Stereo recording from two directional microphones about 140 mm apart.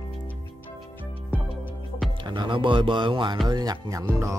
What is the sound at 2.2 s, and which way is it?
Speech, 35° right (ahead or behind).